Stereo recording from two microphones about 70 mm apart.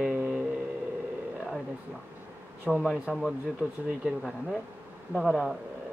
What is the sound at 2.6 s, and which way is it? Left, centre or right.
Speech, centre.